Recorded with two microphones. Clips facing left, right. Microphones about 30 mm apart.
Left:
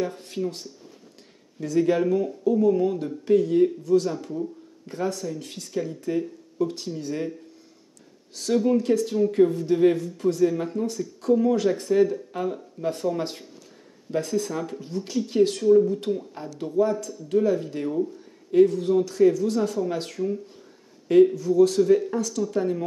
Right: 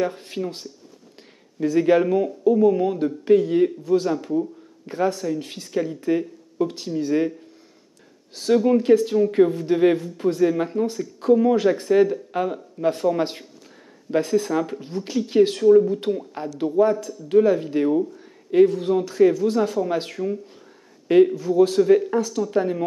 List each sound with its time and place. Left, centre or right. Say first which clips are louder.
0.0 s speech: right 3 dB; centre
8.5 s speech: right 4 dB; centre
21.4 s speech: right 1 dB; right